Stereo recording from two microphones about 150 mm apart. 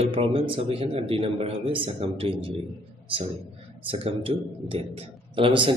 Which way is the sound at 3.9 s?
40° right (ahead or behind).